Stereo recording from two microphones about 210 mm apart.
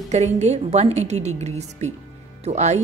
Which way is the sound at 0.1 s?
30° right (ahead or behind).